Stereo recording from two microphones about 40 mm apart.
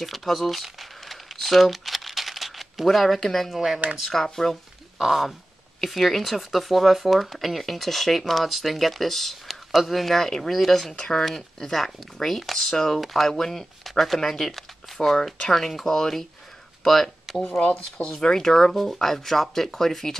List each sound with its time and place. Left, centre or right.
0.0 s crumpling: centre
3.4 s speech: centre
4.0 s speech: centre
4.9 s speech: centre
11.0 s speech: centre
14.9 s a sound: centre
15.2 s speech: centre
16.8 s a sound: centre
17.6 s speech: left; by 20.2 s centre